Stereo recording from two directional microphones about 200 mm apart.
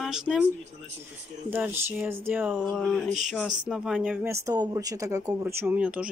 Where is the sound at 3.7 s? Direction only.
5° right (ahead or behind).